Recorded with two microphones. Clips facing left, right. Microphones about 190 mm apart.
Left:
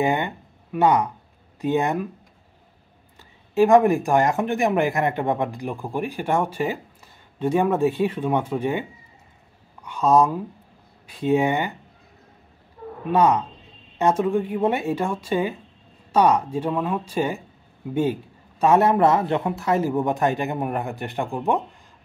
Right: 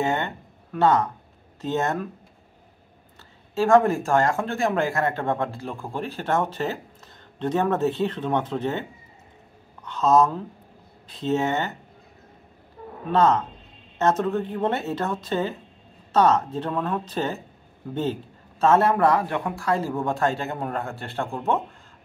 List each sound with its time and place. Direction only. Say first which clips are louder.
0.0 s speech: left 3 dB; 15° left (ahead or behind)
3.5 s speech: left 3 dB; 15° left (ahead or behind)
9.8 s speech: left 1 dB; 10° left (ahead or behind)
13.1 s speech: left 1 dB; 15° left (ahead or behind)
18.6 s speech: left 2 dB; 15° left (ahead or behind)